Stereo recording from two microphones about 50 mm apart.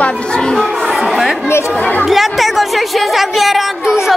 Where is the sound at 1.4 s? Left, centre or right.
Left.